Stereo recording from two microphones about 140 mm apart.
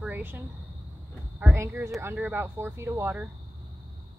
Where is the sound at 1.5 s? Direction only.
20° right (ahead or behind).